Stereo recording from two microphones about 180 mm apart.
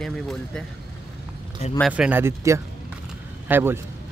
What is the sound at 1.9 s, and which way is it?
Speech, 10° right (ahead or behind).